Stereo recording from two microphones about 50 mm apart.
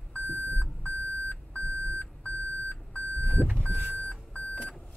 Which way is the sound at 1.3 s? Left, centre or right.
Left.